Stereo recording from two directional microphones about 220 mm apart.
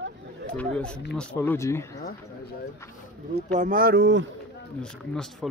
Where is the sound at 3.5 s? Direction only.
35° right (ahead or behind).